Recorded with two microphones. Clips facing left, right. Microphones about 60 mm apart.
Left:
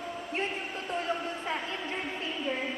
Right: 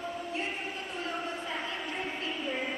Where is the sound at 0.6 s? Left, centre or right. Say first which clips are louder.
Left 3 dB; left.